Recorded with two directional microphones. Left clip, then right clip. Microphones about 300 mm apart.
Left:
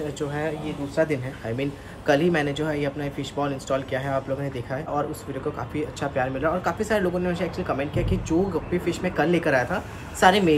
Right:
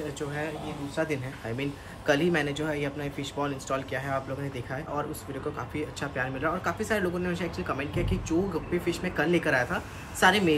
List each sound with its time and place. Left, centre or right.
0.9 s speech: centre